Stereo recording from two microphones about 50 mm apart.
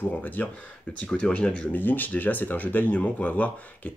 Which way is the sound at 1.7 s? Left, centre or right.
Left.